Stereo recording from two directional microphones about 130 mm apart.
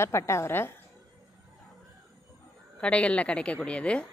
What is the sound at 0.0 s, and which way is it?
Speech, 20° left (ahead or behind).